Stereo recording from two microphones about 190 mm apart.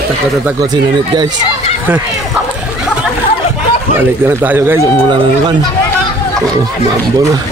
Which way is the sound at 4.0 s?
10° right (ahead or behind).